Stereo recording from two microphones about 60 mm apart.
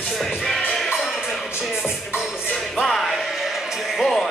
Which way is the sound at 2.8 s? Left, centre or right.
Centre.